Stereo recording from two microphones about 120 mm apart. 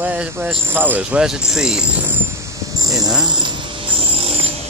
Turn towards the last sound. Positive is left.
turn(degrees=-40)  # may be behind; listen again after turning